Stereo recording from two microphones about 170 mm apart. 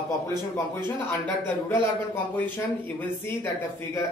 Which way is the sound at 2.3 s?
10° left (ahead or behind).